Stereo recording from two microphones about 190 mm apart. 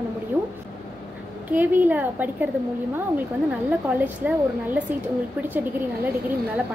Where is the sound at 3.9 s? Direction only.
5° right (ahead or behind).